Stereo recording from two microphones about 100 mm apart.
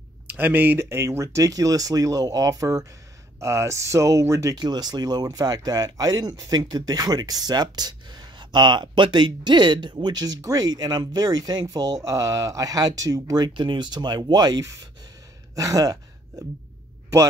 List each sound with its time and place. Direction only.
0.4 s speech: 20° right (ahead or behind)
4.6 s speech: 45° right (ahead or behind)
13.5 s speech: 50° right (ahead or behind)
15.5 s a sound: 35° right (ahead or behind)